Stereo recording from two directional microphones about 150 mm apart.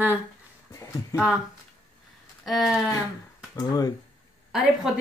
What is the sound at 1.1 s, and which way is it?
Speech, 25° left (ahead or behind).